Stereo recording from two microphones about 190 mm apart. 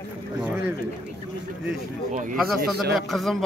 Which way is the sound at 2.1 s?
40° right (ahead or behind).